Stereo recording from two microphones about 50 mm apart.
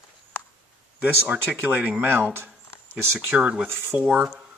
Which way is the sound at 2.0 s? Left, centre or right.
Right.